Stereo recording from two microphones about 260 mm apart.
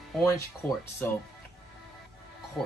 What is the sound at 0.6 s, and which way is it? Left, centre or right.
Speech, centre.